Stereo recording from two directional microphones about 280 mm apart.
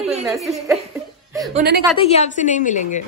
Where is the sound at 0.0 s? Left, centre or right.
Centre.